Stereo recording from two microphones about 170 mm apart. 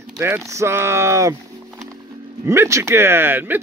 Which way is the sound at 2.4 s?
15° right (ahead or behind).